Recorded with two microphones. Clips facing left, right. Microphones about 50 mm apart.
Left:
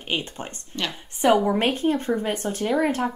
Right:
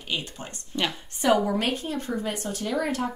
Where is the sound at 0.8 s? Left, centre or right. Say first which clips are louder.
Right 2 dB; centre.